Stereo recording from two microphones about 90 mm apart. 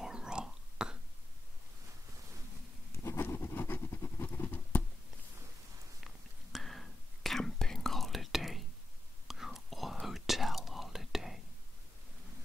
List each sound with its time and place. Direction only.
0.0 s whispering: 10° right (ahead or behind)
3.0 s patter: 30° left (ahead or behind)
6.5 s whispering: centre (ahead or behind)